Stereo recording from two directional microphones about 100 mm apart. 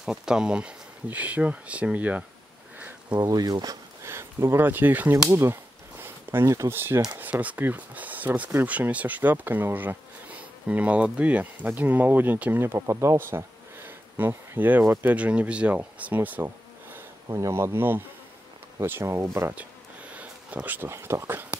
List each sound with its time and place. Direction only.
0.0 s speech: 5° right (ahead or behind)
3.2 s speech: 40° right (ahead or behind)
4.0 s speech: 25° right (ahead or behind)
17.3 s speech: 30° right (ahead or behind)
20.1 s speech: 15° right (ahead or behind)